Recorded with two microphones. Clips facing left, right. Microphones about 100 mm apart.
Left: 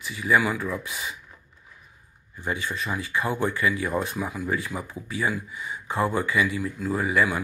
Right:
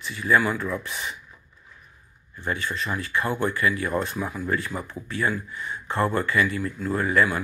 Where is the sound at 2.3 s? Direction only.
15° left (ahead or behind).